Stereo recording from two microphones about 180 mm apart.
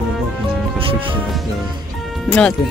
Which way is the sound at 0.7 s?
30° right (ahead or behind).